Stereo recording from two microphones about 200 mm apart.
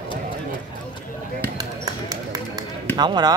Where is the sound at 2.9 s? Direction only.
20° right (ahead or behind).